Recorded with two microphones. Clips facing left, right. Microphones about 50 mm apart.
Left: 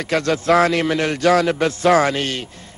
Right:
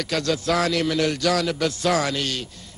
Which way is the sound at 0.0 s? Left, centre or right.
Left.